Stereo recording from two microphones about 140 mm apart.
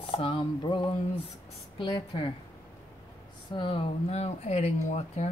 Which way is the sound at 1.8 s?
35° left (ahead or behind).